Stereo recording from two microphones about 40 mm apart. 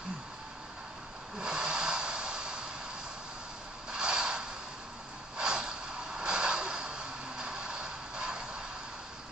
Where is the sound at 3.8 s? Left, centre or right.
Centre.